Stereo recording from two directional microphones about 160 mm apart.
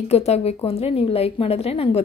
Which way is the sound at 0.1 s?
40° left (ahead or behind).